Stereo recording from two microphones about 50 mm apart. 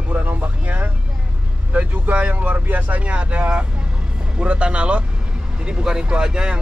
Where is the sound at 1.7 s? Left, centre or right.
Right.